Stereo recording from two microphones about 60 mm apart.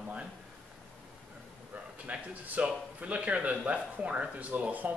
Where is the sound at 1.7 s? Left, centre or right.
Right.